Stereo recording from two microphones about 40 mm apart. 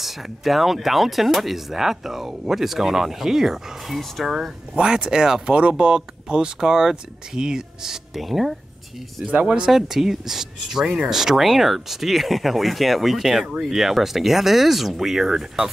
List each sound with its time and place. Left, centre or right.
0.0 s speech: centre
4.7 s speech: right
5.5 s speech: right; by 8.5 s centre
9.4 s speech: centre
9.7 s speech: centre